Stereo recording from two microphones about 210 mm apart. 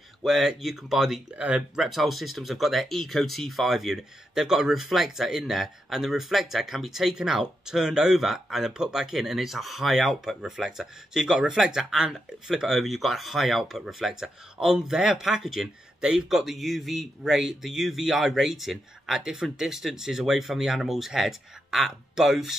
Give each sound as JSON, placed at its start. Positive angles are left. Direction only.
{"t": 0.2, "sound": "speech", "side_deg": 0}